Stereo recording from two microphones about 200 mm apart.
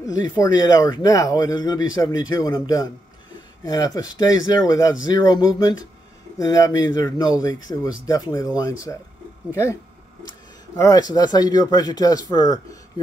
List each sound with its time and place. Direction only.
0.0 s speech: 15° left (ahead or behind)
10.8 s speech: 20° left (ahead or behind)